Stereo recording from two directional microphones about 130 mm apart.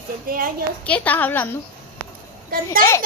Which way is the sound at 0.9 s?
10° left (ahead or behind).